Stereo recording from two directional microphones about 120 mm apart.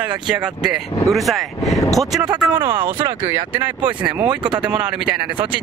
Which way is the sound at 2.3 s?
15° right (ahead or behind).